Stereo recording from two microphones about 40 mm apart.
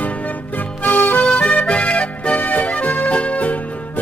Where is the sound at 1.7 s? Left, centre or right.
Left.